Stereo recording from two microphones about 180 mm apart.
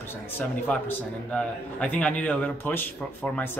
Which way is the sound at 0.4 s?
10° left (ahead or behind).